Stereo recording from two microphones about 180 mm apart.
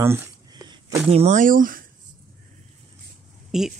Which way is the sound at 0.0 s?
15° right (ahead or behind).